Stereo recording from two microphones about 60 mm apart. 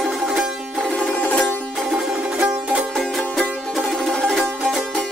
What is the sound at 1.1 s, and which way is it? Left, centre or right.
Music, left.